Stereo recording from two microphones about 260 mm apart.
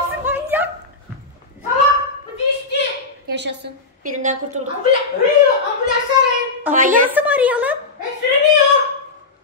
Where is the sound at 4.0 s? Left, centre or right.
Right.